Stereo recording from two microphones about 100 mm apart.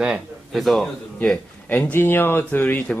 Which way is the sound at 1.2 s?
15° left (ahead or behind).